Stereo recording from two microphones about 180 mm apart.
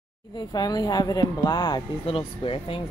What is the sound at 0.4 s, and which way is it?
Speech, 20° left (ahead or behind).